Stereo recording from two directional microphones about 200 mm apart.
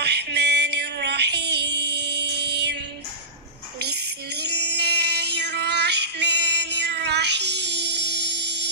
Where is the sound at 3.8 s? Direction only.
55° right (ahead or behind).